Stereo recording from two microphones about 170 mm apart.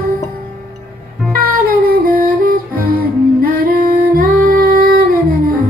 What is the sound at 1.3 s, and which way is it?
Music, 60° right (ahead or behind).